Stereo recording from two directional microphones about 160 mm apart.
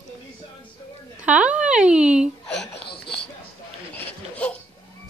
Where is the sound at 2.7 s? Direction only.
90° left.